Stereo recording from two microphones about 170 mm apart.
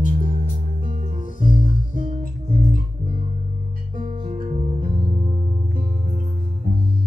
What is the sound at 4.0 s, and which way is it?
Music, 50° right (ahead or behind).